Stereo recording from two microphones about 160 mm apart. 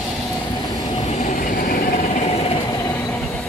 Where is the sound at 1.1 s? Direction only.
50° left (ahead or behind).